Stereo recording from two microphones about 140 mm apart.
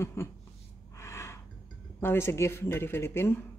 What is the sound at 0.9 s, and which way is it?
Gasp, 20° left (ahead or behind).